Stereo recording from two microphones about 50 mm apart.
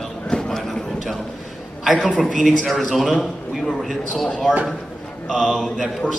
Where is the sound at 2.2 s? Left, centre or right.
Centre.